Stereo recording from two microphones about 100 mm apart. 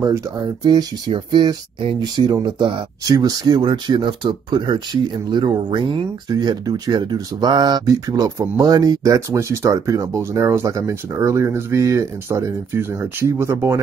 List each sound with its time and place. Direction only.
0.7 s speech: 45° right (ahead or behind)
3.1 s speech: 40° right (ahead or behind)
6.2 s speech: 45° right (ahead or behind); by 13.7 s 25° right (ahead or behind)